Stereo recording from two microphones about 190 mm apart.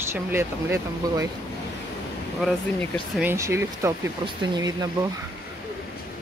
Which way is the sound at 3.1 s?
15° right (ahead or behind).